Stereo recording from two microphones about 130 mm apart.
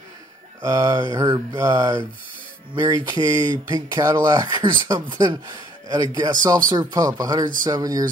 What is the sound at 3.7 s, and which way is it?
Speech, 30° right (ahead or behind).